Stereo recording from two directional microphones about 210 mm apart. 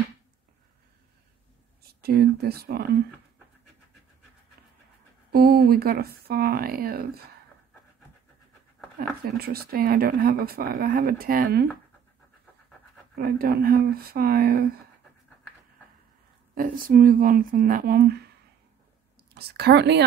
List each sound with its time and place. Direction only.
1.8 s speech: 45° right (ahead or behind)
5.3 s speech: 45° right (ahead or behind)
8.9 s speech: 45° right (ahead or behind)
13.2 s speech: 45° right (ahead or behind)
16.5 s speech: 40° right (ahead or behind)
19.3 s speech: 50° right (ahead or behind)